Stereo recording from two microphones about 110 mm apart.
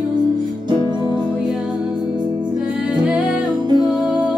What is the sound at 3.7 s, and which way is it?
Music, 45° right (ahead or behind).